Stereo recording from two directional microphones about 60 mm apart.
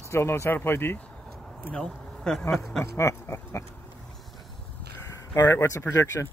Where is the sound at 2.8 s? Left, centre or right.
Left.